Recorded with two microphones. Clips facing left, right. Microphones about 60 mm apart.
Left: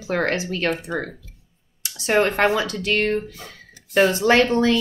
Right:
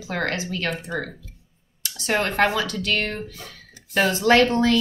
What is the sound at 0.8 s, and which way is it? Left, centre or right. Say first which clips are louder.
A woman's voice: left 2 dB; centre.